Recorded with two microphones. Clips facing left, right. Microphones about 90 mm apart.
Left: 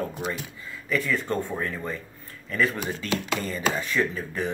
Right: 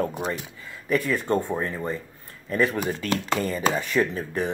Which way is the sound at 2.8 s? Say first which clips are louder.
Right 2 dB; 50° right (ahead or behind).